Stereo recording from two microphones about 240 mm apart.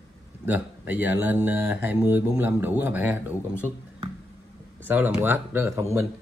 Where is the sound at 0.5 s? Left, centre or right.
Centre.